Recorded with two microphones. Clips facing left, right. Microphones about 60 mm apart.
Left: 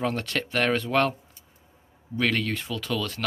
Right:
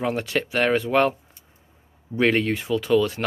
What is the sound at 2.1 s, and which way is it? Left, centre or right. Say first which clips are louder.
Speech: right 5 dB; right.